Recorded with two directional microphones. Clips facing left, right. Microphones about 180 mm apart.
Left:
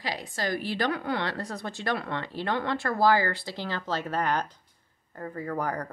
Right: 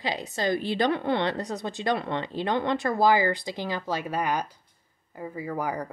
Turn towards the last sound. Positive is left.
turn(degrees=-10)  # may be behind; listen again after turning